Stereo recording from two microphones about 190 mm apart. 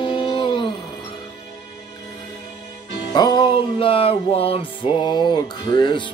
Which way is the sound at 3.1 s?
20° left (ahead or behind).